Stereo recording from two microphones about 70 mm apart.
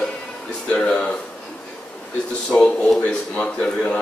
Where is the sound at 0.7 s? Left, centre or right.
Centre.